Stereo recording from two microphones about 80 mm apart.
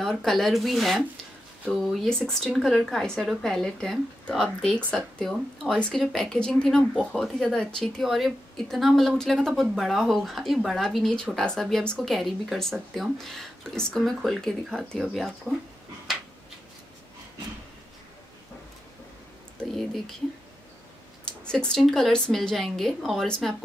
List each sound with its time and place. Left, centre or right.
0.0 s speech: centre
19.7 s speech: centre
21.5 s speech: centre